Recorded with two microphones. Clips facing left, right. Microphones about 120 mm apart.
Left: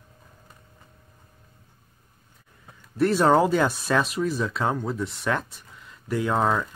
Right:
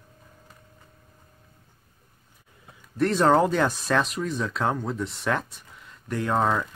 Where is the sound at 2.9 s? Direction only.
5° left (ahead or behind).